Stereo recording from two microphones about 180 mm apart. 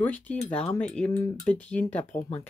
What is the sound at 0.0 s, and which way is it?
Speech, 10° left (ahead or behind).